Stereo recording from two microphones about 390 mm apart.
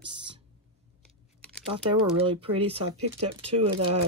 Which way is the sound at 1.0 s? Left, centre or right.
Centre.